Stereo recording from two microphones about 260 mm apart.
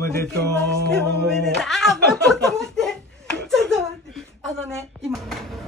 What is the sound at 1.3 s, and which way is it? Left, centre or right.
Speech, centre.